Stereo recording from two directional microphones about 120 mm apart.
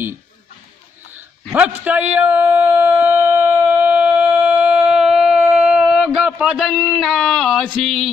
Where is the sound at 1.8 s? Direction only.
15° right (ahead or behind).